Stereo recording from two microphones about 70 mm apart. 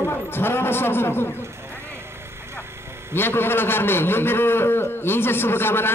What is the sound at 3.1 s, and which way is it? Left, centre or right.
A man's voice, left.